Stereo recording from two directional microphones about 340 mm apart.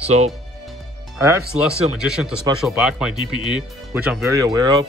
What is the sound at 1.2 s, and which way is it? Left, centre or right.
Speech, centre.